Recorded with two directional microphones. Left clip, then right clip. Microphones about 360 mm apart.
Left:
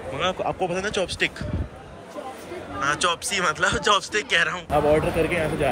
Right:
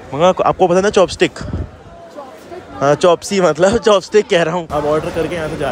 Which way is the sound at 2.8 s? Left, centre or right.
Centre.